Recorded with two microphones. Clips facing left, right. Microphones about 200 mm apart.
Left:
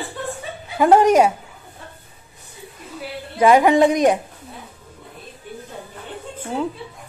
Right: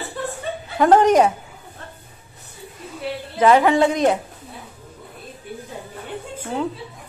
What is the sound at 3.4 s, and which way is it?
Speech, 15° left (ahead or behind).